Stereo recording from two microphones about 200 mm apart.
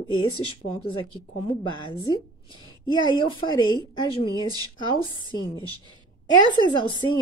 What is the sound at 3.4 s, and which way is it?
Speech, 25° left (ahead or behind).